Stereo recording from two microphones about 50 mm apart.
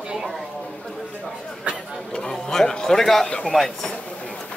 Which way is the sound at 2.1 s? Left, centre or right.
Centre.